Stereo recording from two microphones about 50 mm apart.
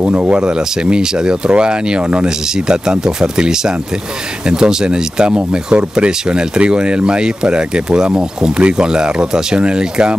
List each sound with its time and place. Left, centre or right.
0.0 s speech: right
0.4 s speech: centre